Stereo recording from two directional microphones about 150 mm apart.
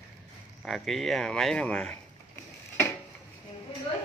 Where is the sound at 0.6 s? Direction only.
Centre (ahead or behind).